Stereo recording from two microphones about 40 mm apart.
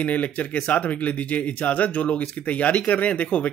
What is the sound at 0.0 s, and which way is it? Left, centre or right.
Speech, left.